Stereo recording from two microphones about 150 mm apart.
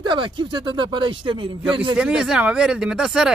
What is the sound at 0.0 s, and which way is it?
Speech, 35° right (ahead or behind).